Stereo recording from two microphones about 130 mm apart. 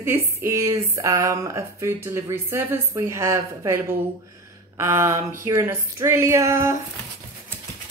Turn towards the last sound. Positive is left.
turn(degrees=-20)  # may be behind; listen again after turning